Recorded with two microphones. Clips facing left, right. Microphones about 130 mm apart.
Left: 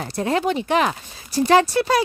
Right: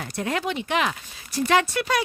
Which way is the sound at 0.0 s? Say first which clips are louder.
Left 6 dB; 30° left (ahead or behind).